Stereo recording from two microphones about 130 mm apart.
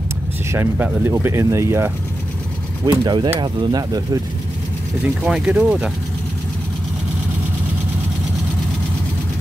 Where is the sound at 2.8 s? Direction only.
35° right (ahead or behind).